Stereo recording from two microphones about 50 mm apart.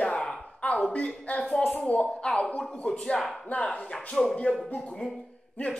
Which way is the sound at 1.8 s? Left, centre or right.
Left.